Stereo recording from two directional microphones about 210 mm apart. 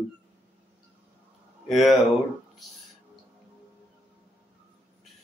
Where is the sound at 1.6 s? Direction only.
Centre (ahead or behind).